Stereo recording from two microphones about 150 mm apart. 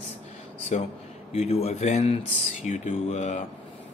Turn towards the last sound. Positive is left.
turn(degrees=50)  # may be behind; listen again after turning